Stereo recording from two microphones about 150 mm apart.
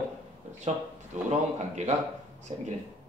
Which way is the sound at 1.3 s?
50° right (ahead or behind).